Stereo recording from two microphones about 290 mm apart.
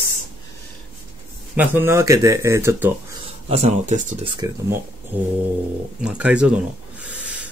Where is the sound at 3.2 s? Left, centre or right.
Right.